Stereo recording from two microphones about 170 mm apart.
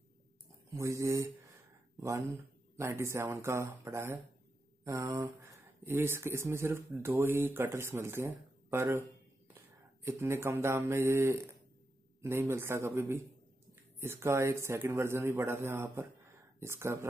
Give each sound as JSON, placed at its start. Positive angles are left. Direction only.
{"t": 0.7, "sound": "speech", "side_deg": -15}
{"t": 10.0, "sound": "speech", "side_deg": -15}